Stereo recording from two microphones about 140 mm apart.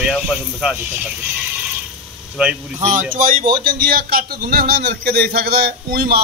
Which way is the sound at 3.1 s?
65° right (ahead or behind).